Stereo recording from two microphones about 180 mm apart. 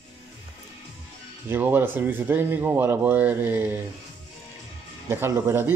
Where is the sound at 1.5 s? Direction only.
10° right (ahead or behind).